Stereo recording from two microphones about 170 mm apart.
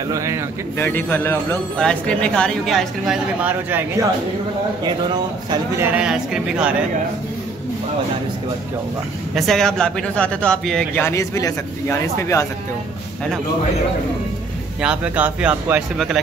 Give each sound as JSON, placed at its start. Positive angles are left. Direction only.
{"t": 0.1, "sound": "speech", "side_deg": -20}
{"t": 0.7, "sound": "speech", "side_deg": 10}
{"t": 5.8, "sound": "speech", "side_deg": -10}
{"t": 9.3, "sound": "speech", "side_deg": 0}
{"t": 11.0, "sound": "a man's voice", "side_deg": 15}
{"t": 14.8, "sound": "speech", "side_deg": -5}